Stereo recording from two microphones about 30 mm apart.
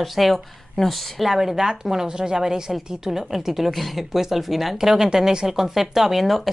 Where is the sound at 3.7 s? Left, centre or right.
Centre.